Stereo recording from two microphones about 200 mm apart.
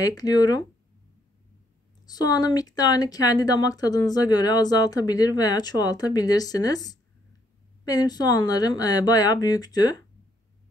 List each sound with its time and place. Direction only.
0.0 s speech: 20° left (ahead or behind)
2.0 s speech: 20° left (ahead or behind)